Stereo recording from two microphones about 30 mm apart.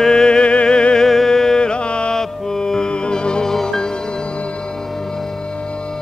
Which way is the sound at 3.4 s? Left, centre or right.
Centre.